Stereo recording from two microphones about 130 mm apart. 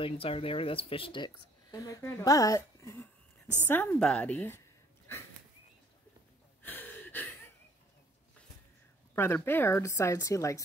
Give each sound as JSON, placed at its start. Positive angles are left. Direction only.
{"t": 0.0, "sound": "speech", "side_deg": 45}
{"t": 1.7, "sound": "a woman's voice", "side_deg": 25}
{"t": 6.6, "sound": "gasp", "side_deg": 15}
{"t": 9.1, "sound": "speech", "side_deg": 20}